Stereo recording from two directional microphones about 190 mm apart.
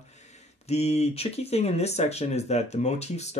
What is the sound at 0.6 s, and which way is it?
Speech, 35° left (ahead or behind).